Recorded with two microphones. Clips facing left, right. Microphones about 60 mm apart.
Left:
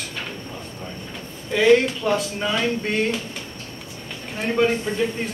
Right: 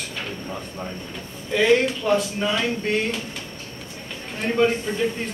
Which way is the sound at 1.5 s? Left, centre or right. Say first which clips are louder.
Left 2 dB; centre.